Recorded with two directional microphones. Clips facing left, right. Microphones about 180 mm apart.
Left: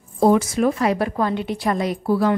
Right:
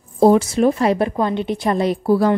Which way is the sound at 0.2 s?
30° right (ahead or behind).